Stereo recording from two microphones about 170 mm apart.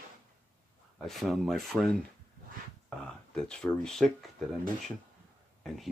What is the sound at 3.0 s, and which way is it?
Speech, 5° left (ahead or behind).